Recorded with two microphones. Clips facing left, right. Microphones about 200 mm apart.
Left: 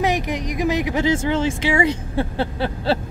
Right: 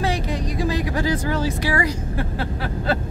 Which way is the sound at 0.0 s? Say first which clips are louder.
Left 2 dB; 20° left (ahead or behind).